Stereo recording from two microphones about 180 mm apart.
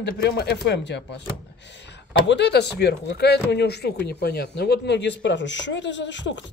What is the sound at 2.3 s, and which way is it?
Speech, 70° left (ahead or behind).